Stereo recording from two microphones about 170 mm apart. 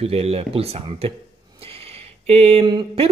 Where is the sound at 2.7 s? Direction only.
25° right (ahead or behind).